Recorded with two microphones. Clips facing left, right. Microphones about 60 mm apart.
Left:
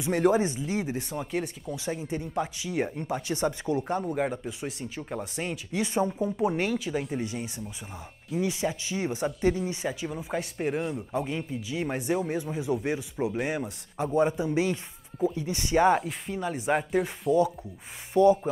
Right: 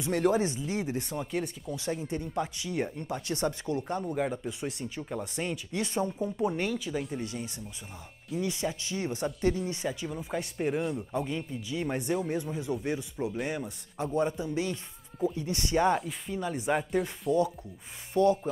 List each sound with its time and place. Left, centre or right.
0.0 s speech: centre
4.5 s speech: centre